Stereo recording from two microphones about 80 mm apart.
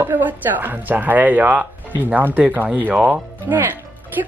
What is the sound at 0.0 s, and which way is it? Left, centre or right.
Speech, right.